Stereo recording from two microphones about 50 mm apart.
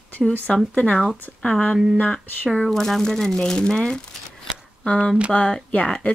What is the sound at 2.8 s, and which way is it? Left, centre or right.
Speech, centre.